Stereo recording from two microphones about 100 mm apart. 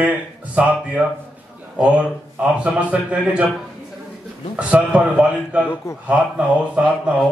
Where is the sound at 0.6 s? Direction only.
15° right (ahead or behind).